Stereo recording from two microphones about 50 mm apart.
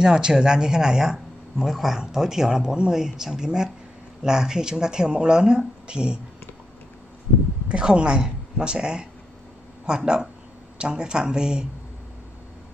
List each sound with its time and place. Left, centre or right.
0.0 s speech: centre
7.6 s speech: right